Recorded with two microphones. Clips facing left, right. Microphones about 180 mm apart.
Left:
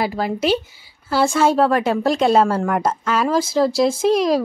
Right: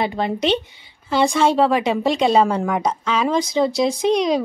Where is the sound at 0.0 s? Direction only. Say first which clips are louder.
Even; 5° left (ahead or behind).